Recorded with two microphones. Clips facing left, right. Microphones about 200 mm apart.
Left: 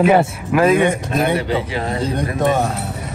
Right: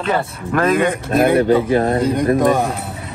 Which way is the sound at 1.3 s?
50° right (ahead or behind).